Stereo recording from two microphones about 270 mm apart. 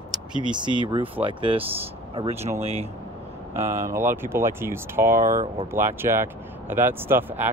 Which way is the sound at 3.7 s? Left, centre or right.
Centre.